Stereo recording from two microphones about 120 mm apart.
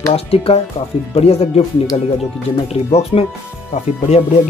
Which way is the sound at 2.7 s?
60° left (ahead or behind).